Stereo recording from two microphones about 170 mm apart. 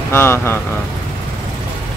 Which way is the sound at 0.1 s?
15° left (ahead or behind).